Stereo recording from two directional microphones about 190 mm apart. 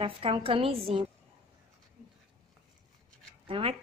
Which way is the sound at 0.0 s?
30° right (ahead or behind).